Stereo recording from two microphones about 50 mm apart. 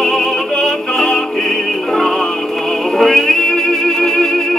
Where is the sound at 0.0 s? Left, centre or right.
Centre.